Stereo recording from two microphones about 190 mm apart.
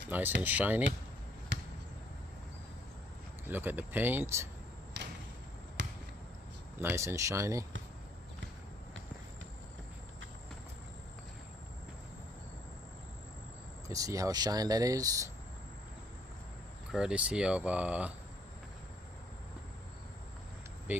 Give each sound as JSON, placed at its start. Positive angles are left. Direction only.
{"t": 0.4, "sound": "speech", "side_deg": -10}
{"t": 1.5, "sound": "basketball bounce", "side_deg": -65}
{"t": 3.4, "sound": "speech", "side_deg": -10}
{"t": 4.9, "sound": "a sound", "side_deg": -70}
{"t": 5.8, "sound": "basketball bounce", "side_deg": -75}
{"t": 6.8, "sound": "speech", "side_deg": -10}
{"t": 13.8, "sound": "speech", "side_deg": -15}
{"t": 16.9, "sound": "speech", "side_deg": -5}
{"t": 20.9, "sound": "speech", "side_deg": -10}